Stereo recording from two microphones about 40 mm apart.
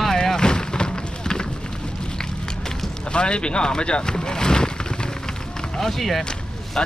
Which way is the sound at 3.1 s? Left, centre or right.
Left.